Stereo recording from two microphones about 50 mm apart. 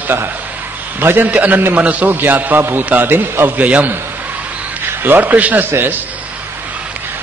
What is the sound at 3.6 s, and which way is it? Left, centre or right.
Speech, right.